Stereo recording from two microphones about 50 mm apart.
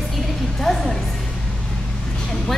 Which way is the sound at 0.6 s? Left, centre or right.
Centre.